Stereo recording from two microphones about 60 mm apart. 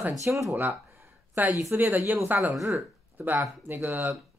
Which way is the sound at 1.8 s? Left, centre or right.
Right.